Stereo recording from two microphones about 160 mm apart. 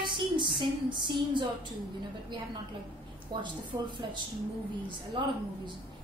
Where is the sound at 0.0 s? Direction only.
30° right (ahead or behind).